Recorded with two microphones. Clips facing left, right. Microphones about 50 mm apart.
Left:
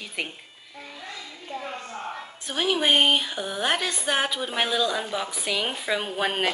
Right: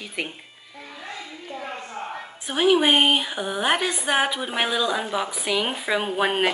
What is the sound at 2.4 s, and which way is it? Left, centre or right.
Speech, centre.